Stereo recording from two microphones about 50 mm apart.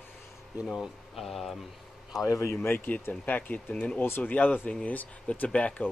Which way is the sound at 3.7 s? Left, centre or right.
Centre.